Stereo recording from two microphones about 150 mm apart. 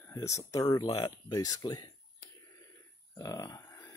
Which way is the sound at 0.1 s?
20° left (ahead or behind).